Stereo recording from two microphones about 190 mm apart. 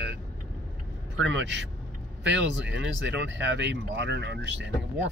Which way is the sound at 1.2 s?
70° right (ahead or behind).